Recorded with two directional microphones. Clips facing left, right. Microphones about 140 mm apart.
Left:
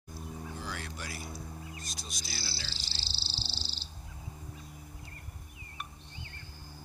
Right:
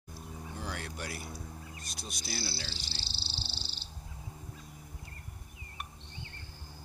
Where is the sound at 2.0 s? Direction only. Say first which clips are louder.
Right 4 dB; 60° right (ahead or behind).